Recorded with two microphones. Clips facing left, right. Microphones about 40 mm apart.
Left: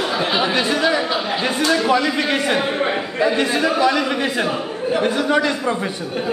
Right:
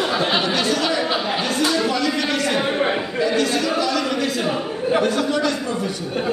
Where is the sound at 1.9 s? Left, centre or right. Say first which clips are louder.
Left 3 dB; left.